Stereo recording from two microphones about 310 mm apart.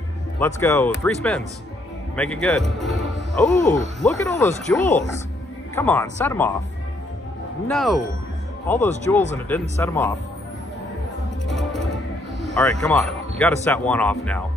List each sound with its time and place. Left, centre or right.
0.4 s speech: centre
7.6 s speech: centre
9.1 s speech: centre
11.4 s music: centre
12.4 s speech: centre